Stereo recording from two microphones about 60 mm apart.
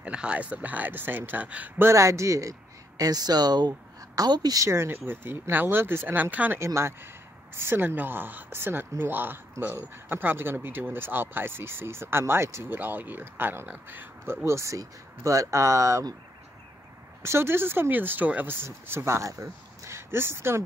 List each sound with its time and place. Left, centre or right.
0.0 s speech: centre
1.8 s speech: right
3.0 s a woman's voice: right
4.6 s speech: right
6.6 s speech: right
12.6 s speech: right
17.2 s speech: right